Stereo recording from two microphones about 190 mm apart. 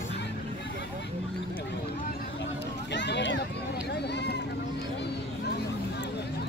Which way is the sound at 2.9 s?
65° left (ahead or behind).